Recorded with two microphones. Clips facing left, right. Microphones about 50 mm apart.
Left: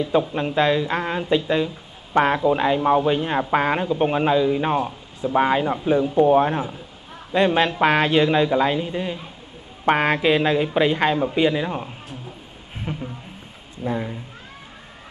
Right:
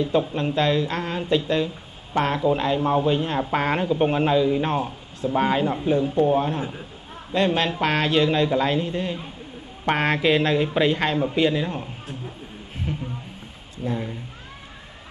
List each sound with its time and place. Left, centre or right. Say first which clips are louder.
0.3 s a man's voice: left 2 dB; centre
2.1 s speech: left 3 dB; left
3.6 s a man's voice: left 1 dB; centre
13.8 s speech: left 2 dB; centre